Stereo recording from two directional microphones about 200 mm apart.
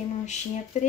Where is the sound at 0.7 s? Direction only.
35° left (ahead or behind).